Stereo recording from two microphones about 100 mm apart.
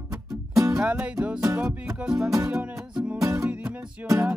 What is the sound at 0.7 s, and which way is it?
Music, 15° right (ahead or behind).